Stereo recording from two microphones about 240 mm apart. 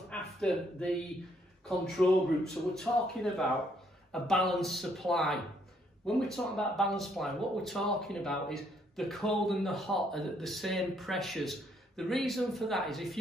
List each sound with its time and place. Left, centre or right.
0.1 s speech: centre
4.1 s speech: centre